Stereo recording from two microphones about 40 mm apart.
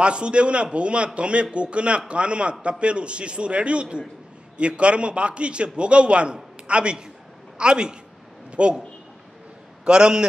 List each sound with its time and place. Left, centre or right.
0.0 s a man's voice: right
9.8 s a man's voice: right